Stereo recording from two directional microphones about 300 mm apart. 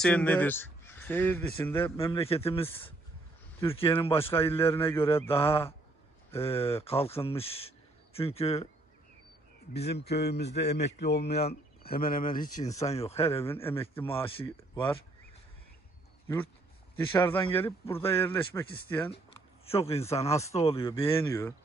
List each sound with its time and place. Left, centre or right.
0.0 s speech: centre
3.7 s speech: centre
9.8 s a man's voice: left
13.5 s speech: centre
17.6 s speech: centre
19.6 s speech: centre